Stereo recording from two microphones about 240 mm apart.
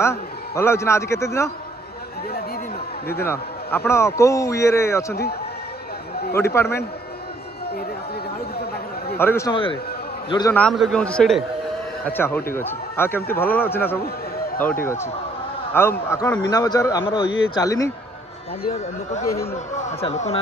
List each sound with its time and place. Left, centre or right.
0.0 s a man's voice: centre
3.3 s a man's voice: centre
6.5 s a man's voice: centre
8.5 s a sound: left
9.2 s a man's voice: centre
15.7 s a man's voice: centre
18.6 s speech: left